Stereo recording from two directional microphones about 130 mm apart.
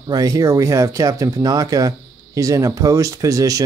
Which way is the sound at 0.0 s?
30° right (ahead or behind).